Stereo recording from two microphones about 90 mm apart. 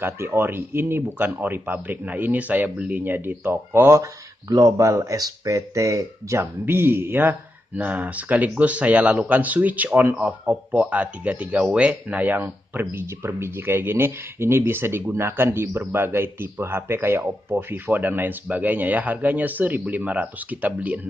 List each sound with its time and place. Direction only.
0.0 s speech: 25° right (ahead or behind)